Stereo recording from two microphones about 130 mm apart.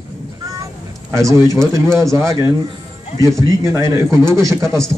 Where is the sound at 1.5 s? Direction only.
25° right (ahead or behind).